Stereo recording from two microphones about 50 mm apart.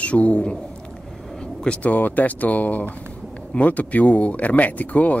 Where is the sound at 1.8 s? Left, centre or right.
Left.